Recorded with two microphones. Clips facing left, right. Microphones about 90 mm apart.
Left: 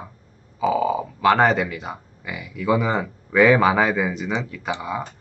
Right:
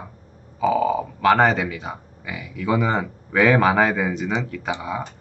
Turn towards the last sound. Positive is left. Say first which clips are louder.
# even
turn(degrees=5)  # may be behind; listen again after turning